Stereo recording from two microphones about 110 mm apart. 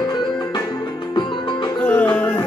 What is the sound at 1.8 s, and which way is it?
Music, 10° left (ahead or behind).